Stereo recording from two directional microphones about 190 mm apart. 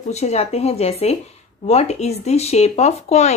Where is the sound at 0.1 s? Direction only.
35° left (ahead or behind).